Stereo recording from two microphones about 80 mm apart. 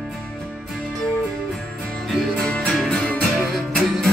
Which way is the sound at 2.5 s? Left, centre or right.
Centre.